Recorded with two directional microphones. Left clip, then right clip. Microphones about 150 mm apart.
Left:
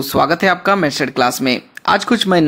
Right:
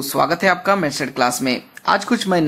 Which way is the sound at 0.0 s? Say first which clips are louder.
Left 3 dB; 35° left (ahead or behind).